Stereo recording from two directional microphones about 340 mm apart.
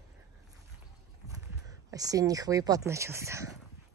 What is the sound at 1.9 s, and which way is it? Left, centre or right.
Speech, centre.